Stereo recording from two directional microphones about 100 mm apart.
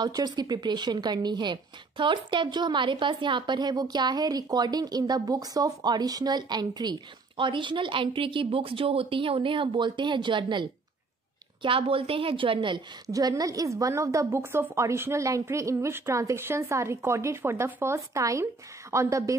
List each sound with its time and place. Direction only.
0.0 s a woman's voice: 40° right (ahead or behind)
11.6 s a woman's voice: 65° right (ahead or behind)
13.1 s a woman's voice: 35° right (ahead or behind)